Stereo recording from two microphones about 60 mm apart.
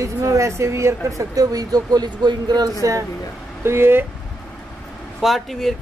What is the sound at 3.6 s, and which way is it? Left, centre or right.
Speech, right.